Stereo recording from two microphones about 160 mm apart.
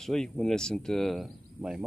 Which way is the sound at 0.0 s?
5° left (ahead or behind).